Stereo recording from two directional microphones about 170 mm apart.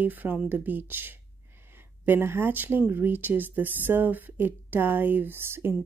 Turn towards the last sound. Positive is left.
turn(degrees=-15)  # may be behind; listen again after turning